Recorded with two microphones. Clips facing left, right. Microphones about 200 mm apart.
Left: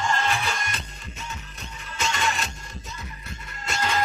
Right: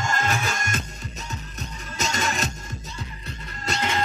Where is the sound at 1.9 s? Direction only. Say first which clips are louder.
Right 1 dB; 40° right (ahead or behind).